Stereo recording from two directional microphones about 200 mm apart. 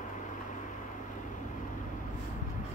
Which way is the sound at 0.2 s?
40° left (ahead or behind).